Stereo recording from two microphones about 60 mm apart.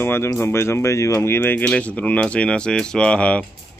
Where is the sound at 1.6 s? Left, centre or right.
Left.